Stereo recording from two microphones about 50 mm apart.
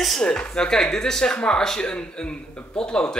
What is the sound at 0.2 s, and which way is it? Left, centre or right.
Speech, centre.